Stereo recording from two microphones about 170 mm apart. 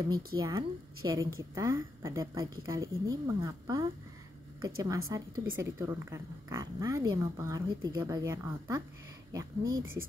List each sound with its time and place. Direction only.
0.0 s speech: 20° right (ahead or behind)